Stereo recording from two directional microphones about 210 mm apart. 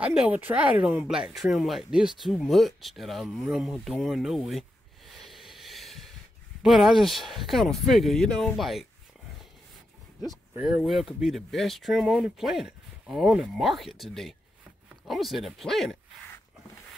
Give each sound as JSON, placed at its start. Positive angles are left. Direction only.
{"t": 0.0, "sound": "speech", "side_deg": -5}
{"t": 5.2, "sound": "a sound", "side_deg": 0}
{"t": 6.6, "sound": "speech", "side_deg": 0}
{"t": 10.5, "sound": "speech", "side_deg": -5}